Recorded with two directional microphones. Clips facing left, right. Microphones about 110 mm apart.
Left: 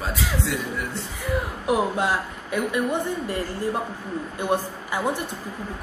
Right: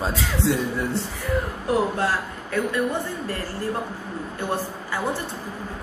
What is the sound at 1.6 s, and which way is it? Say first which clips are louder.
Speech: left 1 dB; 15° left (ahead or behind).